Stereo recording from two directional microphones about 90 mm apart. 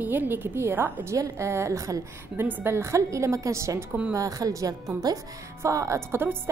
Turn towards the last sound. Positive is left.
turn(degrees=-25)  # may be behind; listen again after turning